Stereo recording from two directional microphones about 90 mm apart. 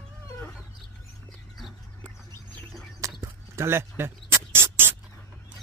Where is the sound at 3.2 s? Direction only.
35° right (ahead or behind).